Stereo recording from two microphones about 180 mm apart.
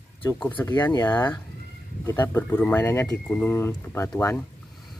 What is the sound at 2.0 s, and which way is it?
Speech, 10° left (ahead or behind).